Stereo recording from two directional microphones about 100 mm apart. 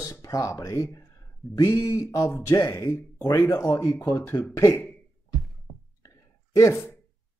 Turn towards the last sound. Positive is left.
turn(degrees=30)  # may be behind; listen again after turning